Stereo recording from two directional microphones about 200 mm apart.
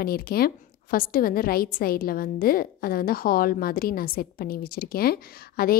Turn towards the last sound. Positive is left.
turn(degrees=50)  # may be behind; listen again after turning